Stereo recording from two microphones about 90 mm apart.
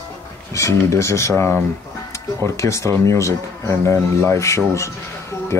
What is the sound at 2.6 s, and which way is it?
Speech, 35° left (ahead or behind).